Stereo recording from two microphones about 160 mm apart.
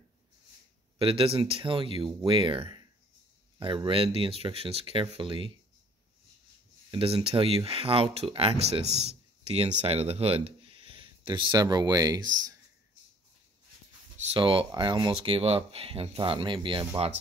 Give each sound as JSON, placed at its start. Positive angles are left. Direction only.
{"t": 0.9, "sound": "speech", "side_deg": -35}
{"t": 6.9, "sound": "speech", "side_deg": -30}
{"t": 14.1, "sound": "speech", "side_deg": -40}